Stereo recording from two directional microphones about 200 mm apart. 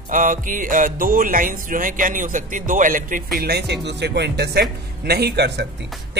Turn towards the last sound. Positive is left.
turn(degrees=-55)  # may be behind; listen again after turning